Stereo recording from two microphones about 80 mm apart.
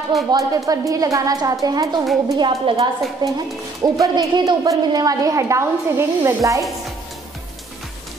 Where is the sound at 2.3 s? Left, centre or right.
Right.